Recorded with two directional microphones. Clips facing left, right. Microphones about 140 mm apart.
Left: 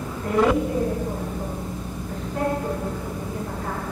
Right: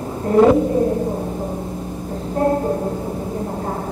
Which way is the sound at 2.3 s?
35° right (ahead or behind).